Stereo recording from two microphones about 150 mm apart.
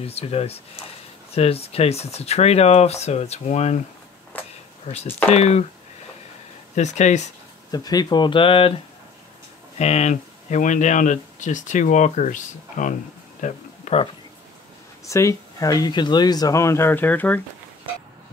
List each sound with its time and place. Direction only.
0.0 s speech: 40° left (ahead or behind)
4.9 s speech: 45° left (ahead or behind)
6.7 s speech: 50° left (ahead or behind)
7.7 s speech: 25° left (ahead or behind)
9.8 s speech: 45° left (ahead or behind)
13.4 s a sound: 50° left (ahead or behind)
15.0 s speech: 20° left (ahead or behind)